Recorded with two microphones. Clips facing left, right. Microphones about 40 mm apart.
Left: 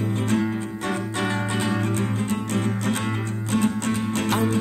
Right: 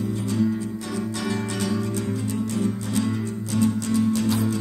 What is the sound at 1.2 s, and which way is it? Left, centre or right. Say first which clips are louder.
Music: left 3 dB; left.